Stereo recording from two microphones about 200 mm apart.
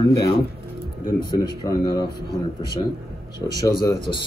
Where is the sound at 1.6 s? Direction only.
20° left (ahead or behind).